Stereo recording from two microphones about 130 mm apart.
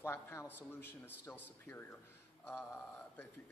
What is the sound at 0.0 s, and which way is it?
A man's voice, 20° left (ahead or behind).